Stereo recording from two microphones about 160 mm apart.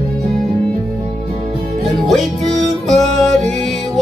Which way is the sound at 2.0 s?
Centre (ahead or behind).